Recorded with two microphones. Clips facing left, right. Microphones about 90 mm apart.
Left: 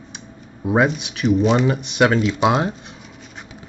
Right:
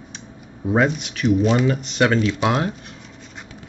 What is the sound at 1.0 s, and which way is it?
Speech, 15° left (ahead or behind).